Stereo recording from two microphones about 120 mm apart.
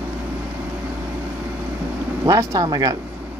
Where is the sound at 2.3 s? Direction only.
30° right (ahead or behind).